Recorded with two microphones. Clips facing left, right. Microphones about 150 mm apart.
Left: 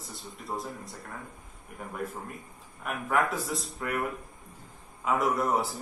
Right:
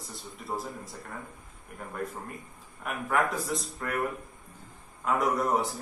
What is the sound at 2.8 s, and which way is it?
A man's voice, centre (ahead or behind).